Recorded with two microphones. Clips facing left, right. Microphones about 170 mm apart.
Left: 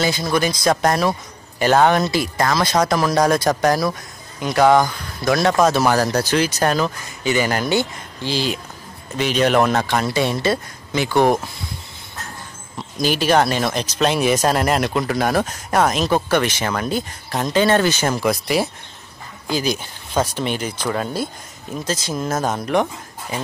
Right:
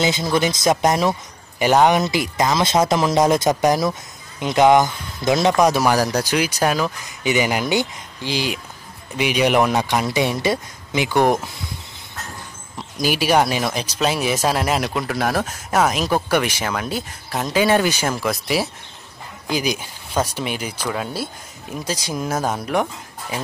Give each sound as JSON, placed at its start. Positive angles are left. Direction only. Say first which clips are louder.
{"t": 0.0, "sound": "speech", "louder": "even", "side_deg": -20}
{"t": 13.0, "sound": "speech", "louder": "left 1 dB", "side_deg": -10}